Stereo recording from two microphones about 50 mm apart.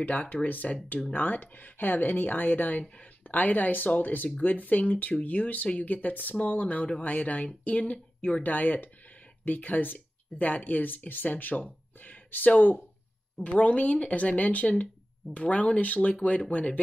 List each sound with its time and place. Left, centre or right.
0.0 s speech: left
8.4 s speech: left